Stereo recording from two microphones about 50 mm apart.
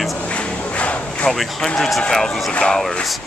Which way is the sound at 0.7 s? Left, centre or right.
Left.